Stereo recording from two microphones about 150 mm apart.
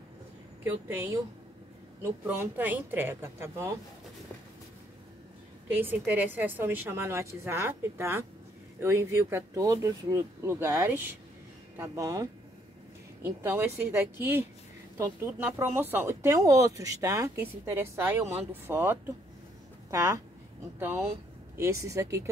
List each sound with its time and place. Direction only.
0.7 s speech: 15° right (ahead or behind)
2.2 s speech: 15° right (ahead or behind)
5.7 s speech: 10° right (ahead or behind)